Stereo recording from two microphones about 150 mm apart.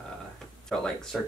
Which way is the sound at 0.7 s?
5° left (ahead or behind).